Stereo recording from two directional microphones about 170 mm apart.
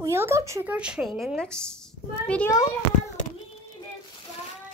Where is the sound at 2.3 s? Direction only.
10° left (ahead or behind).